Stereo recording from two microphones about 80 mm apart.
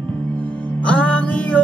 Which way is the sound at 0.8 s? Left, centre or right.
Centre.